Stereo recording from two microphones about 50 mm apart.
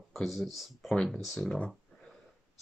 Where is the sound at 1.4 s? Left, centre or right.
Left.